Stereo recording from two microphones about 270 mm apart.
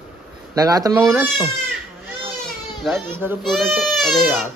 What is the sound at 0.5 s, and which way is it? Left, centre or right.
Speech, centre.